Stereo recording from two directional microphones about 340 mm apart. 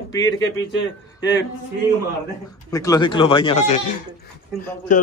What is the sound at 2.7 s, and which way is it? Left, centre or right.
A man's voice, centre.